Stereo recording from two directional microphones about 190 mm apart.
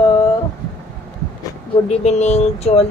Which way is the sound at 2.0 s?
35° left (ahead or behind).